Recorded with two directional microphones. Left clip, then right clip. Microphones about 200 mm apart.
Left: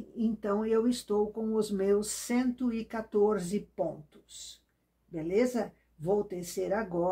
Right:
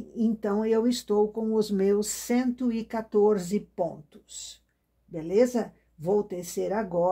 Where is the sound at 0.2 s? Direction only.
35° right (ahead or behind).